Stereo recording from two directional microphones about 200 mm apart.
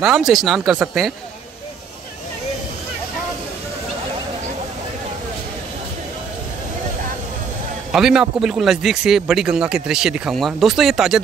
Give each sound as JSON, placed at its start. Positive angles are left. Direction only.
{"t": 0.0, "sound": "speech", "side_deg": 0}
{"t": 7.9, "sound": "speech", "side_deg": -5}